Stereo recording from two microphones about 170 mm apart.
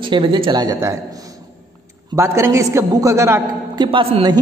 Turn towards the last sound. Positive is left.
turn(degrees=-30)  # may be behind; listen again after turning